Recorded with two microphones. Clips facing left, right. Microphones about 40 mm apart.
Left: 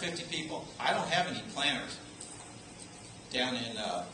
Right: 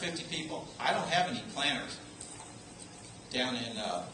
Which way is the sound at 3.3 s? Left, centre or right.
Centre.